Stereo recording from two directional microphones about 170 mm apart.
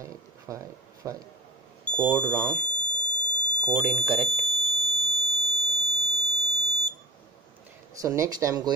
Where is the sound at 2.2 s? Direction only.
5° left (ahead or behind).